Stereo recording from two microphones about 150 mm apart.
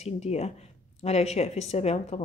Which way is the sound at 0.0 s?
45° left (ahead or behind).